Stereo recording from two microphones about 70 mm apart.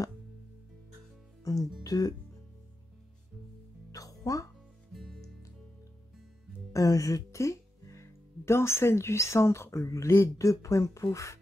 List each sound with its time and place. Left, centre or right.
1.4 s music: left
1.8 s speech: left
3.9 s music: left
4.9 s music: centre
6.7 s speech: left